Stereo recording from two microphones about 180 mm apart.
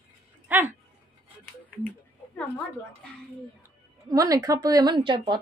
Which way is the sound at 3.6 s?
20° right (ahead or behind).